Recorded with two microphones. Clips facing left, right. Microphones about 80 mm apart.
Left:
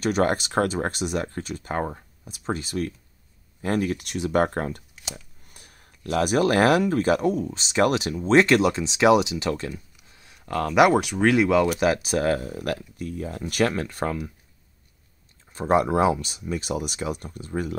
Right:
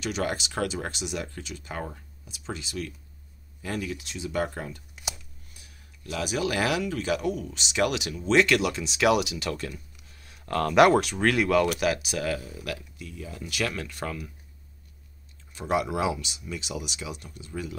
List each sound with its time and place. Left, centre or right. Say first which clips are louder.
0.0 s speech: left 7 dB; left
10.1 s speech: left 1 dB; centre
11.8 s speech: left 5 dB; left
15.5 s speech: left 6 dB; left